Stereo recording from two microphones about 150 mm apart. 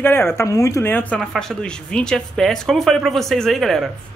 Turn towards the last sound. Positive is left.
turn(degrees=0)  # may be behind; listen again after turning